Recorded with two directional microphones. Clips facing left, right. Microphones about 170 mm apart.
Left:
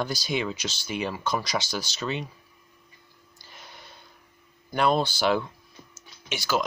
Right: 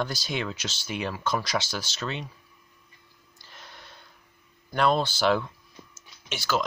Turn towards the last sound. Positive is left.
turn(degrees=0)  # may be behind; listen again after turning